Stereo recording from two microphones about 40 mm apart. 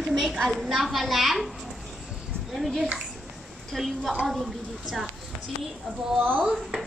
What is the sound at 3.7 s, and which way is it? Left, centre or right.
A woman's voice, centre.